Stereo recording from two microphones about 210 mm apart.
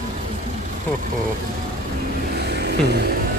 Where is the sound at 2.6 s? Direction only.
50° right (ahead or behind).